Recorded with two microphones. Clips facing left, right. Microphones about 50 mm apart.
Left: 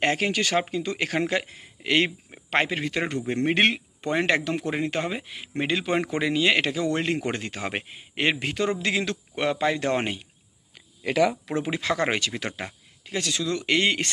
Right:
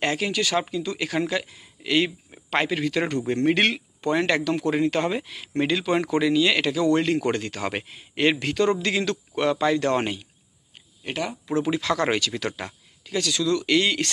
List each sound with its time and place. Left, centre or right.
0.0 s speech: left
2.3 s a man's voice: left
11.5 s speech: left